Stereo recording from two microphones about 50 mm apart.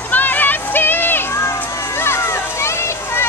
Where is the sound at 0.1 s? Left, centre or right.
Left.